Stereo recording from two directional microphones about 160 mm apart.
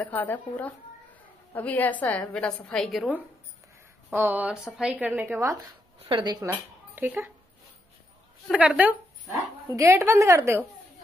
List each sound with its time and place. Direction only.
0.0 s a woman's voice: 10° left (ahead or behind)
4.1 s a woman's voice: 10° right (ahead or behind)
6.5 s a woman's voice: 10° right (ahead or behind)
8.5 s a woman's voice: 10° right (ahead or behind)